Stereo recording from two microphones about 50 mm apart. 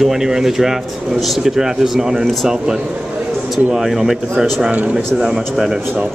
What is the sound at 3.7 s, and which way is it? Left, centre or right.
Speech, centre.